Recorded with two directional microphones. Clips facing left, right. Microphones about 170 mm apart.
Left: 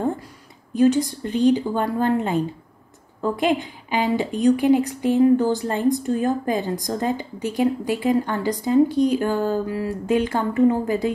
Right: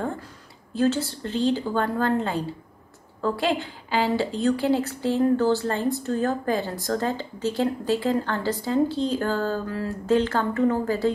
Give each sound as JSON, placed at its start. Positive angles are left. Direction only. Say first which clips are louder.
{"t": 0.7, "sound": "a woman's voice", "louder": "left 5 dB", "side_deg": 15}